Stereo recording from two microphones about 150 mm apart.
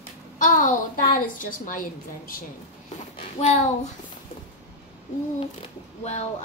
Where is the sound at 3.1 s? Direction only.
45° left (ahead or behind).